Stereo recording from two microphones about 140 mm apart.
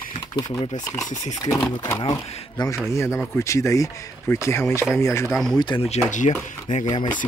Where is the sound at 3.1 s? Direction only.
20° left (ahead or behind).